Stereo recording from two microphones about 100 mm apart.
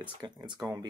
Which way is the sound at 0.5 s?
30° right (ahead or behind).